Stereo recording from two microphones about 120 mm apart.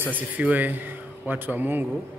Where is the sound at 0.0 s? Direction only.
15° right (ahead or behind).